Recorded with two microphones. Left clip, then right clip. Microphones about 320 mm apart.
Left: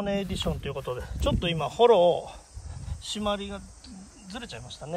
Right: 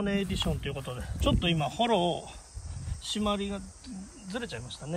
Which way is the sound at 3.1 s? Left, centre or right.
Centre.